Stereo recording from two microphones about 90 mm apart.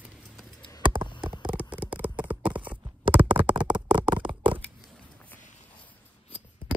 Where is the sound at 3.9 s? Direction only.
65° right (ahead or behind).